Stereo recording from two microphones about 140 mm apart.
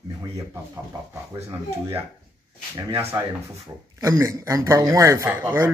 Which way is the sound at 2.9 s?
20° right (ahead or behind).